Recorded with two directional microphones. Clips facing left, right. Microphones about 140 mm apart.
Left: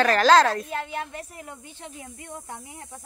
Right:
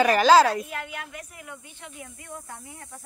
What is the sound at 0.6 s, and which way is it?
Speech, 30° left (ahead or behind).